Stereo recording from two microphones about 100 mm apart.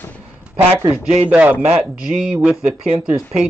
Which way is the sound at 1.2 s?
15° right (ahead or behind).